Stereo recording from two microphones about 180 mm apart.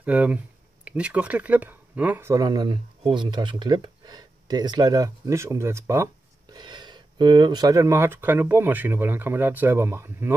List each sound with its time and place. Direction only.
0.0 s speech: 5° right (ahead or behind)
6.5 s speech: 25° right (ahead or behind)